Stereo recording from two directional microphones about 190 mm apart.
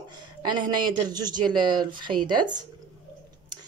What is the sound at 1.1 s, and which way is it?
Speech, 20° right (ahead or behind).